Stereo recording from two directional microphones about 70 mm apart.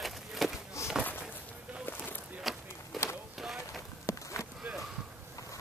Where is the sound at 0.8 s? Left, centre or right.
Left.